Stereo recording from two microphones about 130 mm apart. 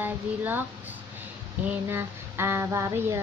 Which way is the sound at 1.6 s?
20° right (ahead or behind).